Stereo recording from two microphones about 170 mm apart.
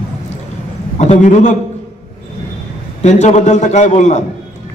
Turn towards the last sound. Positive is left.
turn(degrees=45)  # may be behind; listen again after turning